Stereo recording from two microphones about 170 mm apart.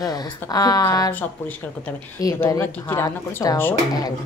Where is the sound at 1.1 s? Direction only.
10° left (ahead or behind).